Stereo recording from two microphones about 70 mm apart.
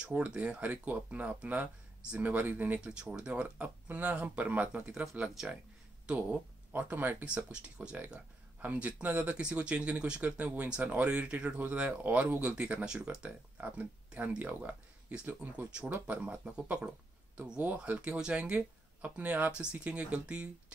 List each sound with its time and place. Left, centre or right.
0.1 s speech: centre
2.8 s speech: centre
5.2 s speech: centre
6.7 s speech: right
17.6 s speech: right